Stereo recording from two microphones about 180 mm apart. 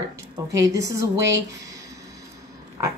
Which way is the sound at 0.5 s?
15° right (ahead or behind).